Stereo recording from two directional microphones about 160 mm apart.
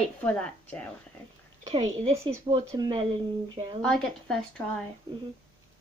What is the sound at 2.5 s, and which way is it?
Speech, 30° right (ahead or behind).